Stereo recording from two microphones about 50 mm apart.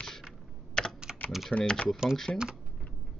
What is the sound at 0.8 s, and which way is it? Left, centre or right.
Typing, centre.